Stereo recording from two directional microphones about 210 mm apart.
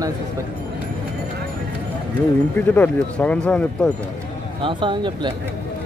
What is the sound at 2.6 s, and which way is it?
Speech, 10° left (ahead or behind).